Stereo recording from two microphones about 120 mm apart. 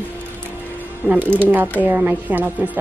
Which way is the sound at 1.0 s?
15° left (ahead or behind).